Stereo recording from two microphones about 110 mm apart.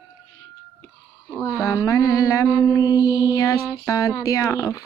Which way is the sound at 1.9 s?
30° left (ahead or behind).